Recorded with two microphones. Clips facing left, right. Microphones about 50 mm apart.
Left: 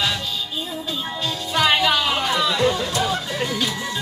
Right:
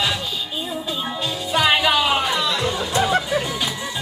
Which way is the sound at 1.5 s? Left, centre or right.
Centre.